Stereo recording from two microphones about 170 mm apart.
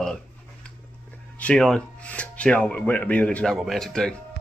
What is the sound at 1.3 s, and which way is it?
A man's voice, 5° left (ahead or behind).